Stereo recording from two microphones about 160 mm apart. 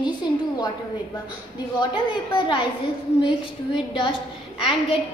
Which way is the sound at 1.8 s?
30° left (ahead or behind).